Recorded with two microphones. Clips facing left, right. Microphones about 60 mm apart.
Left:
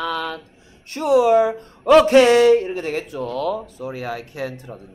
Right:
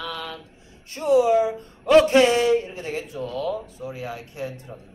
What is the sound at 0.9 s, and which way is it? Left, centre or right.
Speech, left.